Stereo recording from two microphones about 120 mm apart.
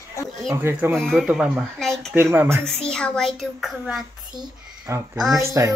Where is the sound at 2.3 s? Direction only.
20° right (ahead or behind).